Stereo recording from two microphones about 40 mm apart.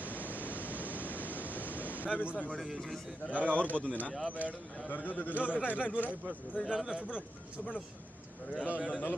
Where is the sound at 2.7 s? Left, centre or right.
Centre.